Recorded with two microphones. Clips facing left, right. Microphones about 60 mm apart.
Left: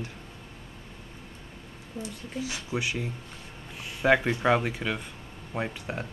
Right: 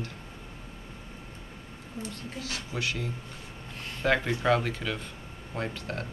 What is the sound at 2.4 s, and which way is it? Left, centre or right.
Speech, centre.